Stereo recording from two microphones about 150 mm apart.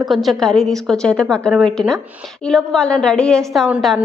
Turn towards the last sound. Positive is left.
turn(degrees=0)  # may be behind; listen again after turning